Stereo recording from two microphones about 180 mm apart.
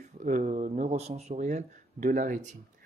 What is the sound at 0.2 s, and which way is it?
Speech, 45° right (ahead or behind).